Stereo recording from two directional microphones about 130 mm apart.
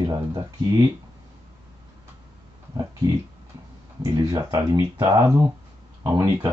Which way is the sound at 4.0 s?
25° right (ahead or behind).